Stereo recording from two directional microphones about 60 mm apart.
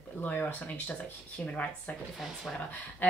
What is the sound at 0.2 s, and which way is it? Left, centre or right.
Speech, left.